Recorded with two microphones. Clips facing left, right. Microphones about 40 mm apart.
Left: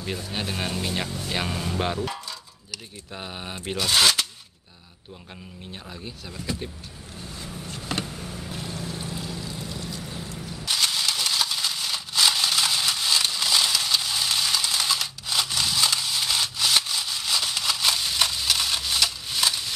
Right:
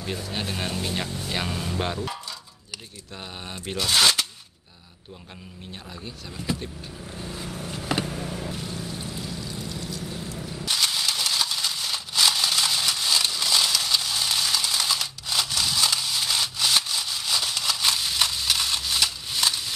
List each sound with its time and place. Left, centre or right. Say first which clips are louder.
0.0 s speech: even; centre
3.2 s speech: left 2 dB; centre
5.7 s speech: even; centre
7.6 s a sound: right 3 dB; centre
8.1 s a sound: right 4 dB; right
8.8 s boat: left 1 dB; centre